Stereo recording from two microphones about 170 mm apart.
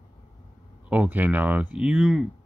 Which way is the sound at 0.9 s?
10° right (ahead or behind).